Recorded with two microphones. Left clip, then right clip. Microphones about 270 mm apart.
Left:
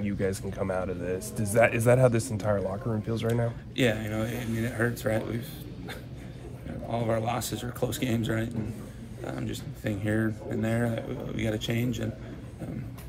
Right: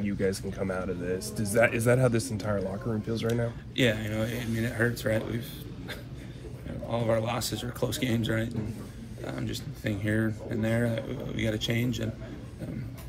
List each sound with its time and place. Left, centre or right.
0.0 s speech: left
3.7 s speech: centre
6.9 s speech: centre
9.2 s speech: centre